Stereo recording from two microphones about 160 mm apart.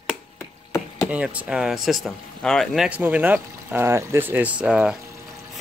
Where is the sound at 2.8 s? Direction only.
10° right (ahead or behind).